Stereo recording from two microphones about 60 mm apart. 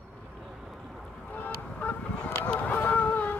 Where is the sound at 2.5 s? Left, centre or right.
Left.